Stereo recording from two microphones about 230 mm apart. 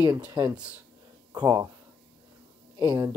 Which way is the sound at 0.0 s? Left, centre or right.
Centre.